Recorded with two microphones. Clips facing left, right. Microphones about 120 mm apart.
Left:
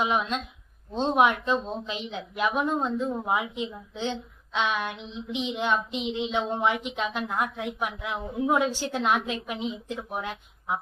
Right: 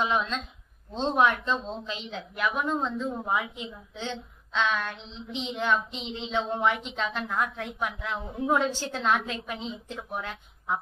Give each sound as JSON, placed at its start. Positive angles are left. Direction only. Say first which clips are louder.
{"t": 0.0, "sound": "a woman's voice", "louder": "left 1 dB", "side_deg": 15}